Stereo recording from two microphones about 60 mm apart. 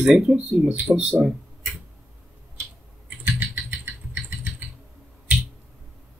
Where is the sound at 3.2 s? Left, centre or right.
Right.